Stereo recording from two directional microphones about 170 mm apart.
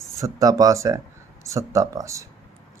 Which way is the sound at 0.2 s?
20° right (ahead or behind).